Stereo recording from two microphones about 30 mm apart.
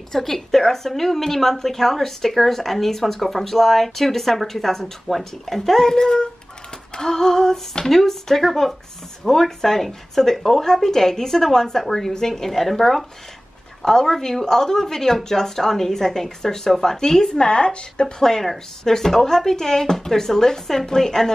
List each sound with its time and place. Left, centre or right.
0.1 s a woman's voice: centre; by 18.1 s left
18.9 s a woman's voice: centre